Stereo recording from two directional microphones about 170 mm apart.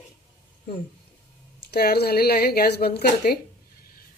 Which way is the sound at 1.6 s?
70° left (ahead or behind).